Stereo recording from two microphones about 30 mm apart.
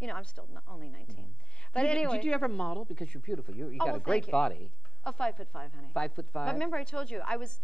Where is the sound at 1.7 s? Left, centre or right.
Left.